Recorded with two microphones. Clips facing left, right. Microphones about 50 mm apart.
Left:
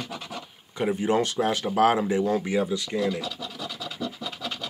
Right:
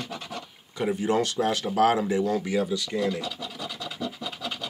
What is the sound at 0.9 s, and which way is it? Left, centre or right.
Speech, left.